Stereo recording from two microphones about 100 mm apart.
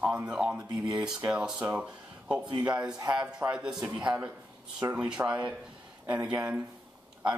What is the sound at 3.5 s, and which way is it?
Speech, 10° right (ahead or behind).